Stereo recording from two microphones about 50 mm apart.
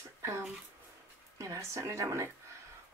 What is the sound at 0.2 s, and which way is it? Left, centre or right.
Speech, right.